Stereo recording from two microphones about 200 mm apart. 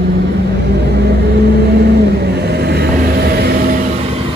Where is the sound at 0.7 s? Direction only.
55° right (ahead or behind); by 4.2 s 35° right (ahead or behind).